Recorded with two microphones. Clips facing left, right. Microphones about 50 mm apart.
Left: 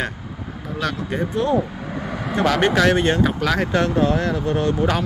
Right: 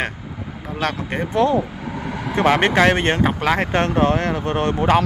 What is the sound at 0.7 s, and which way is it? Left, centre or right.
Speech, right.